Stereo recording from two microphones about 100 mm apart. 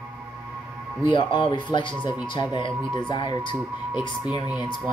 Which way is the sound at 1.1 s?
50° left (ahead or behind).